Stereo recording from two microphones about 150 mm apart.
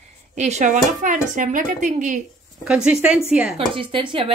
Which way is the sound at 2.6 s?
5° right (ahead or behind).